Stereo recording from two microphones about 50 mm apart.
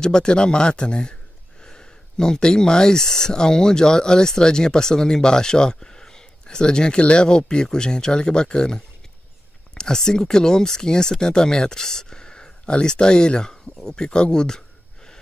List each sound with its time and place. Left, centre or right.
0.0 s speech: centre